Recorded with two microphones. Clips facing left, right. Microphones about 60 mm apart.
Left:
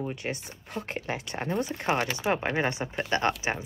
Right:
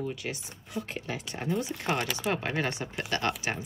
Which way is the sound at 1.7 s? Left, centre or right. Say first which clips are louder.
Left 3 dB; left.